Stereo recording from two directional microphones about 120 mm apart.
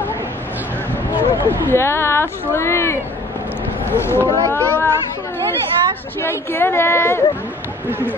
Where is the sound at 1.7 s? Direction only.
20° left (ahead or behind).